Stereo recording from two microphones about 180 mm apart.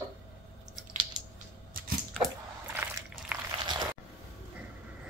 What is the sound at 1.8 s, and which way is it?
Typewriter, 55° right (ahead or behind).